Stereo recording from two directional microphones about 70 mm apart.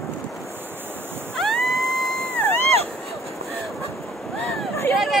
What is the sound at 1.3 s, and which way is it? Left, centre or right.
Ocean, centre.